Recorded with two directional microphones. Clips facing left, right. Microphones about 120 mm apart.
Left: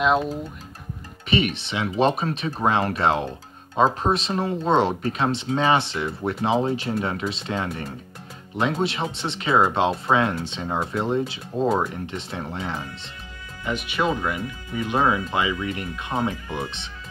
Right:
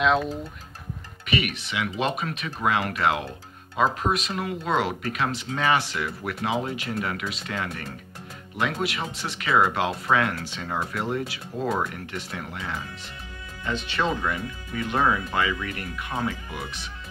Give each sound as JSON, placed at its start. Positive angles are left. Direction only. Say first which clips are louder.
{"t": 1.2, "sound": "speech", "louder": "left 4 dB", "side_deg": 30}
{"t": 13.7, "sound": "speech", "louder": "left 2 dB", "side_deg": 15}